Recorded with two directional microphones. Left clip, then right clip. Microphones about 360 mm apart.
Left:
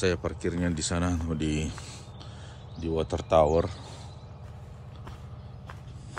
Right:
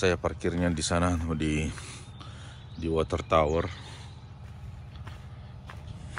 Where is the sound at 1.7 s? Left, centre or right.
Left.